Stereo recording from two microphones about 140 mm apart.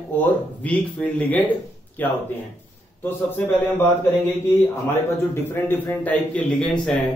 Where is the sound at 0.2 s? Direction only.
10° left (ahead or behind).